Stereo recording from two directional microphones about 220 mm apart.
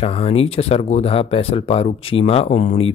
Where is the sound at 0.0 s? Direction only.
25° left (ahead or behind).